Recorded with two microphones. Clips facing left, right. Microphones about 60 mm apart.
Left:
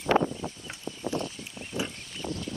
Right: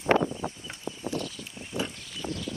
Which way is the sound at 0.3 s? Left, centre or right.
Right.